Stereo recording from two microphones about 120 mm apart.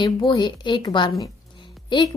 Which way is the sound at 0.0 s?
40° left (ahead or behind).